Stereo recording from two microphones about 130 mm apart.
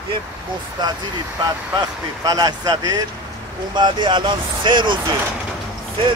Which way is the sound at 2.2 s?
30° right (ahead or behind).